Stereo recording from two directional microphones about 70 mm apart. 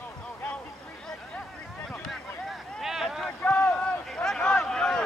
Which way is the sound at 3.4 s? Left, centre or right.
Left.